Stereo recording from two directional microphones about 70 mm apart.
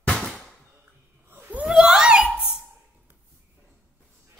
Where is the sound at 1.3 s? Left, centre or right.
Right.